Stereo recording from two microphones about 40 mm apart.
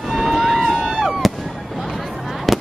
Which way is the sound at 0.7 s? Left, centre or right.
Centre.